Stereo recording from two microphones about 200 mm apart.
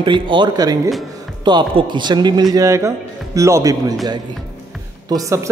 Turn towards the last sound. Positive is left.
turn(degrees=-15)  # may be behind; listen again after turning